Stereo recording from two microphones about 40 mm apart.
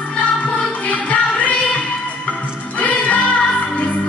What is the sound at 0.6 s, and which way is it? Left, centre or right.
Music, left.